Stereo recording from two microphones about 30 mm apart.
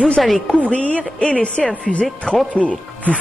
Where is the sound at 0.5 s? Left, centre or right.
Left.